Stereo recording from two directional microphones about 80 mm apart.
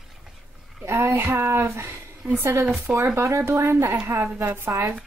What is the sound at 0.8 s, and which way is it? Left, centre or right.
A woman's voice, right.